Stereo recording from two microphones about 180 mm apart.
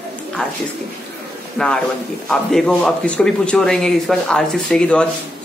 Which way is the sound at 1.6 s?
5° left (ahead or behind).